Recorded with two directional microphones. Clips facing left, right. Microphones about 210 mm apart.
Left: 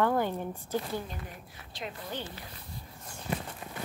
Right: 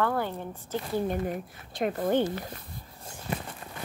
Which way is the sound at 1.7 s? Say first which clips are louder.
Right 13 dB; 50° right (ahead or behind).